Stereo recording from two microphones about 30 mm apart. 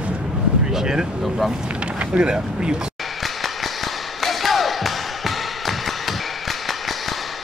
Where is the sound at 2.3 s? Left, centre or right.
Right.